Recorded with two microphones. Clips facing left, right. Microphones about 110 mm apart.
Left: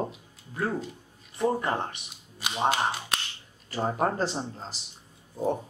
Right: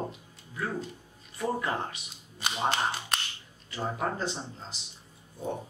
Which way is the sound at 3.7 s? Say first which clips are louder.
Left 5 dB; 40° left (ahead or behind).